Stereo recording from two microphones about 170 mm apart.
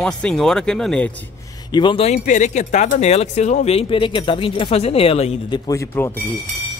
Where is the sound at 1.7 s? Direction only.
25° left (ahead or behind).